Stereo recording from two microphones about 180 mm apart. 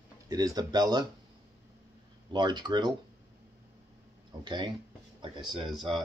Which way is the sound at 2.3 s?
25° right (ahead or behind).